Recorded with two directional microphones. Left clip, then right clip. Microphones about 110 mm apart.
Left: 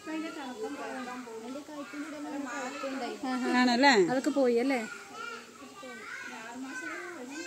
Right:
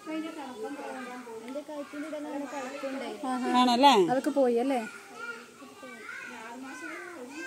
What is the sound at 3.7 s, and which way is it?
Speech, 15° right (ahead or behind).